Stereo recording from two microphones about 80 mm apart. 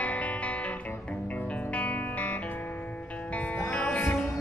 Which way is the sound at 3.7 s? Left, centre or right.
Centre.